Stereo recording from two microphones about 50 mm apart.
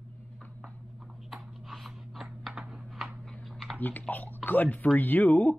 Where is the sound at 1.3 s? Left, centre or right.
Centre.